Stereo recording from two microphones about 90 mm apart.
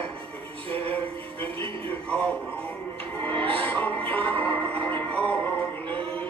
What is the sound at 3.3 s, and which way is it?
Music, 15° left (ahead or behind).